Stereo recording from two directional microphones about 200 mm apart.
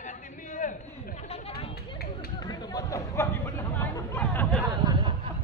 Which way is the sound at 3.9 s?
10° left (ahead or behind).